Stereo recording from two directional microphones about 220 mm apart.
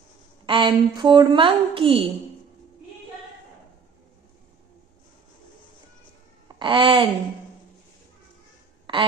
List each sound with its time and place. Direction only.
0.5 s a woman's voice: 20° right (ahead or behind)
6.6 s a woman's voice: 20° right (ahead or behind)
8.9 s a woman's voice: 20° right (ahead or behind)